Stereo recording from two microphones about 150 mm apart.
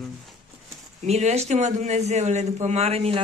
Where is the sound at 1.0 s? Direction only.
45° right (ahead or behind).